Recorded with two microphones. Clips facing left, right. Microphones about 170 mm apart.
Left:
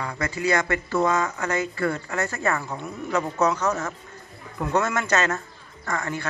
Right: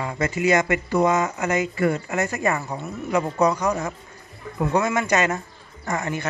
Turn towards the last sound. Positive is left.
turn(degrees=-20)  # may be behind; listen again after turning